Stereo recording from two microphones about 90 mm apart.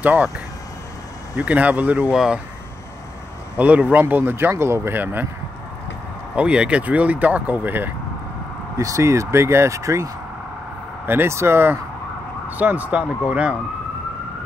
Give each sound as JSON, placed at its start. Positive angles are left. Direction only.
{"t": 0.0, "sound": "speech", "side_deg": -15}
{"t": 1.3, "sound": "speech", "side_deg": -15}
{"t": 2.1, "sound": "speech", "side_deg": -5}
{"t": 3.5, "sound": "speech", "side_deg": -15}
{"t": 6.3, "sound": "speech", "side_deg": -10}
{"t": 8.7, "sound": "speech", "side_deg": -35}